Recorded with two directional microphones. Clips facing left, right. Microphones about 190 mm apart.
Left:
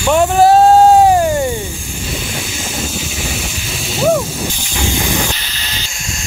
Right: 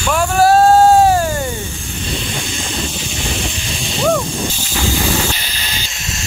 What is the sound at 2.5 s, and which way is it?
Speech, 5° left (ahead or behind).